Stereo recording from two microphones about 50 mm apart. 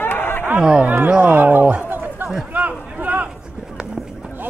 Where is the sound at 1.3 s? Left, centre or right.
Right.